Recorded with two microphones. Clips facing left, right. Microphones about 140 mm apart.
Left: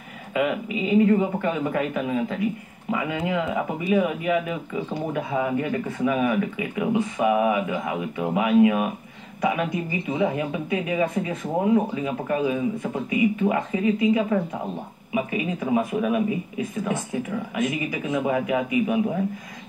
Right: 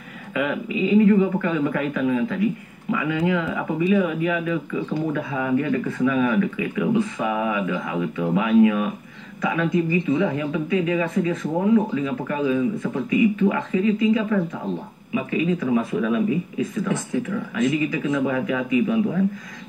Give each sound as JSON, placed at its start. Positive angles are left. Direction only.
{"t": 1.0, "sound": "speech", "side_deg": 25}